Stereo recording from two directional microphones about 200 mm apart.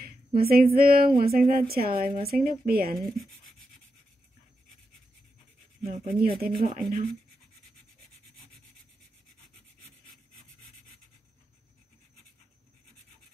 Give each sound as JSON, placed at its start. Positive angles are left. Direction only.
{"t": 0.0, "sound": "speech", "side_deg": -50}
{"t": 6.2, "sound": "speech", "side_deg": -50}